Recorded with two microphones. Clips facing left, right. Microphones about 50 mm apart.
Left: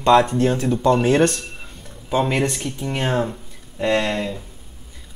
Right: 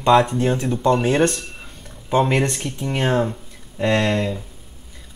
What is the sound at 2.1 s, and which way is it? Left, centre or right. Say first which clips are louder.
Speech: right 2 dB; centre.